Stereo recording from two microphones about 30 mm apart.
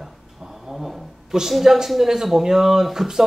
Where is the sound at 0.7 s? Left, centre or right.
Centre.